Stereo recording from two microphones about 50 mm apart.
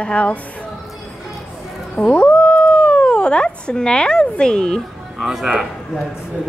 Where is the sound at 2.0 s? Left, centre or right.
Left.